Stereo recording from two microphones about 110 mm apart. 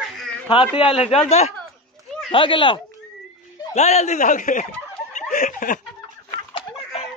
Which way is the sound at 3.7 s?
90° left.